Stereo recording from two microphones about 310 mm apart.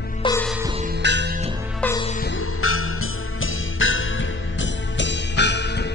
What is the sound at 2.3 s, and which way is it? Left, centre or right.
Music, left.